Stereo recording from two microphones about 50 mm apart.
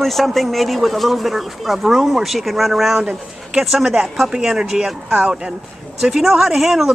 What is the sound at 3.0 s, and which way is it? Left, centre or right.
Speech, centre.